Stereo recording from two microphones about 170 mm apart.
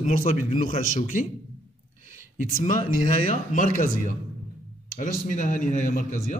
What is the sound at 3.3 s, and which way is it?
A man's voice, 50° left (ahead or behind).